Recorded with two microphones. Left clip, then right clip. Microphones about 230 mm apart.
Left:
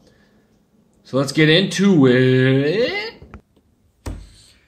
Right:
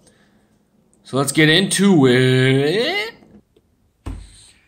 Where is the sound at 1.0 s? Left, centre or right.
Right.